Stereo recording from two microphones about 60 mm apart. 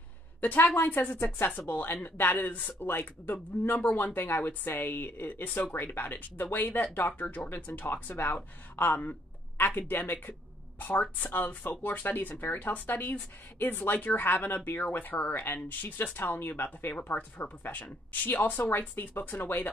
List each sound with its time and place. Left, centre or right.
0.4 s a woman's voice: left